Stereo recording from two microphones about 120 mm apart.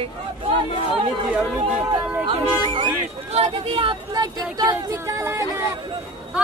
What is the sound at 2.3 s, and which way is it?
Speech, 45° right (ahead or behind).